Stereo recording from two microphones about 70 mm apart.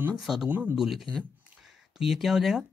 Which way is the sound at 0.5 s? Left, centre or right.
Right.